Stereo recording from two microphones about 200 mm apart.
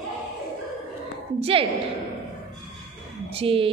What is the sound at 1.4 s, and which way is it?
Speech, 30° right (ahead or behind).